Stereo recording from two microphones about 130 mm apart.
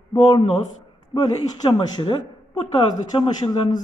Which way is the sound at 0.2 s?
30° left (ahead or behind).